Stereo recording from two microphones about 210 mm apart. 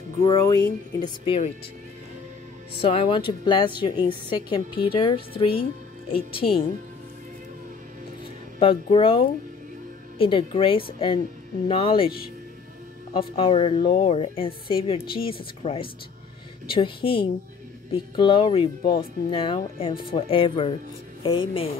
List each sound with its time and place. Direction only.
0.2 s a woman's voice: 15° left (ahead or behind)
2.8 s a woman's voice: 25° left (ahead or behind)
8.5 s a woman's voice: 25° left (ahead or behind)
13.1 s a woman's voice: 25° left (ahead or behind)